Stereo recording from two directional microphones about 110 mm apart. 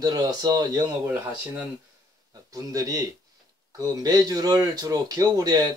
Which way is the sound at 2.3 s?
30° right (ahead or behind).